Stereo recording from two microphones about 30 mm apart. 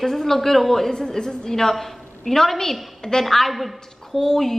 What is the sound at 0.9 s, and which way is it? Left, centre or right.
A woman's voice, left.